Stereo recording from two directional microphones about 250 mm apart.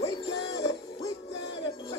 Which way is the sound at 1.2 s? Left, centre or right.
Left.